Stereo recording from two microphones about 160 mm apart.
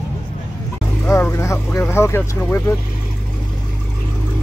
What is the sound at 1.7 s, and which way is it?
Speech, 15° left (ahead or behind).